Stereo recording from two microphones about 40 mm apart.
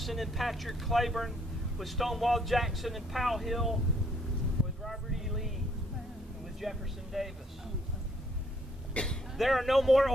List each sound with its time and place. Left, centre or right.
0.0 s speech: centre
4.8 s a sound: centre
6.6 s speech: centre
9.0 s speech: left
9.4 s speech: centre